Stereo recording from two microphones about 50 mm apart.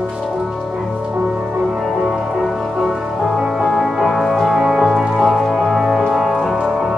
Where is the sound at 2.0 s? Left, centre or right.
Centre.